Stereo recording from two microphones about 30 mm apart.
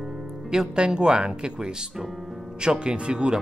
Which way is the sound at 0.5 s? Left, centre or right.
Right.